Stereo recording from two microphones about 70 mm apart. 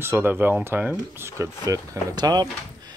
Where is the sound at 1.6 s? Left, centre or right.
Right.